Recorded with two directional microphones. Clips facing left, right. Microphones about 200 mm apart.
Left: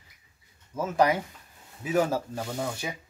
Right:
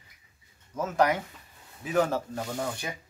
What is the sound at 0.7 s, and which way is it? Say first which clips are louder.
Speech: left 1 dB; 10° left (ahead or behind).